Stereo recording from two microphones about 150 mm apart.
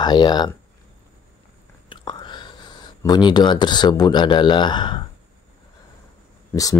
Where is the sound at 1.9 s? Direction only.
30° left (ahead or behind).